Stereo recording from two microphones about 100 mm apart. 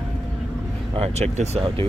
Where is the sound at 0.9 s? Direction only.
90° right.